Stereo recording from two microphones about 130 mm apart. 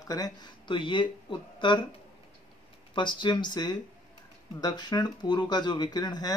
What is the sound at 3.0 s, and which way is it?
Speech, 35° left (ahead or behind).